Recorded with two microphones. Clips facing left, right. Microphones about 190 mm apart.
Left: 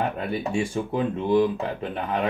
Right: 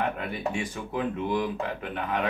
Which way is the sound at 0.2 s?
30° left (ahead or behind).